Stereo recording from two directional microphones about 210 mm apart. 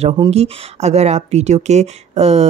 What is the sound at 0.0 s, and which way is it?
Speech, 30° right (ahead or behind).